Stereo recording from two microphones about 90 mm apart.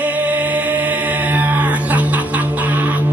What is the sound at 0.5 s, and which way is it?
Music, 15° right (ahead or behind).